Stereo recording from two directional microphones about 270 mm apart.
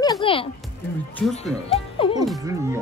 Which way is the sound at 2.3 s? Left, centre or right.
Centre.